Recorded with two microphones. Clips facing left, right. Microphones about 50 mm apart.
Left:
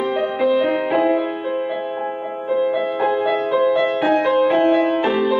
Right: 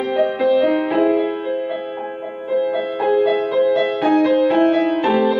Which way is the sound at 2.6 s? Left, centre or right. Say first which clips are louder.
Left 2 dB; centre.